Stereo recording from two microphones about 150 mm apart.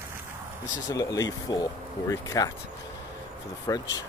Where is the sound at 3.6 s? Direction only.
25° left (ahead or behind).